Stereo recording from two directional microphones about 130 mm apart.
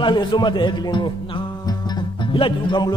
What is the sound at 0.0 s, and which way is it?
A man's voice, 35° left (ahead or behind).